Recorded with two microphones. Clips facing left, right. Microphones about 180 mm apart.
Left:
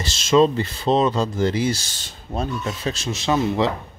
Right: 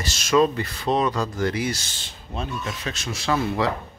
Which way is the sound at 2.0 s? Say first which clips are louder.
Left 5 dB; 40° left (ahead or behind).